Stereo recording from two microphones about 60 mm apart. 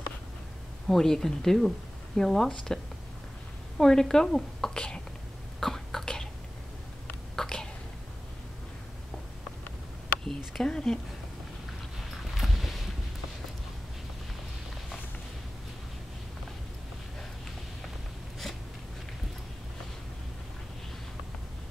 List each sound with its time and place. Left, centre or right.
0.8 s a woman's voice: centre
4.7 s a woman's voice: centre
5.6 s cough: centre
7.3 s a sound: centre
10.2 s a woman's voice: centre
12.4 s boat: centre